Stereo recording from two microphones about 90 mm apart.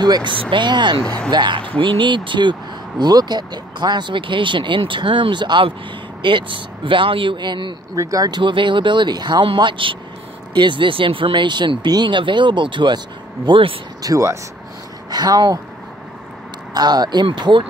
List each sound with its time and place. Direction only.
0.0 s speech: 55° right (ahead or behind)
1.0 s speech: 10° left (ahead or behind)
1.3 s speech: 55° right (ahead or behind)
3.0 s speech: 50° right (ahead or behind)
7.9 s speech: 40° right (ahead or behind)
8.4 s speech: 65° right (ahead or behind)
9.6 s speech: 65° right (ahead or behind)
13.5 s speech: 80° right
14.0 s speech: 35° right (ahead or behind)
15.0 s speech: 50° right (ahead or behind)
16.7 s speech: 50° right (ahead or behind); by 17.6 s 65° right (ahead or behind)